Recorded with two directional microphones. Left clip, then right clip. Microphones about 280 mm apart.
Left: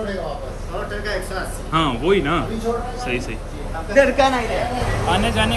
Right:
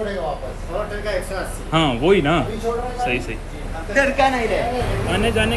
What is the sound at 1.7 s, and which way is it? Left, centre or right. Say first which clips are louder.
Speech: right 1 dB; centre.